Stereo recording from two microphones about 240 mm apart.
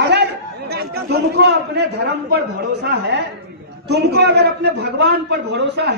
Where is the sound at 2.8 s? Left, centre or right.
Right.